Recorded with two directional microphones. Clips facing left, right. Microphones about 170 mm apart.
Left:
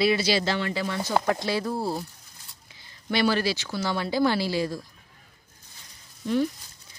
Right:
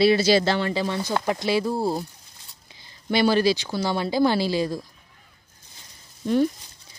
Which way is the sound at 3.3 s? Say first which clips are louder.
Right 6 dB; 15° right (ahead or behind).